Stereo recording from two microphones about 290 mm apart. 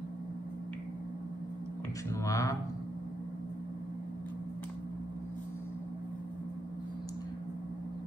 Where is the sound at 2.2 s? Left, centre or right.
Centre.